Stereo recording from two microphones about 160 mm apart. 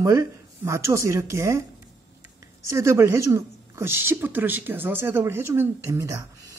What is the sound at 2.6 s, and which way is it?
Speech, 20° right (ahead or behind).